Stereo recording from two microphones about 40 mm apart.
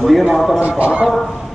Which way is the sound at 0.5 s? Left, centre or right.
Right.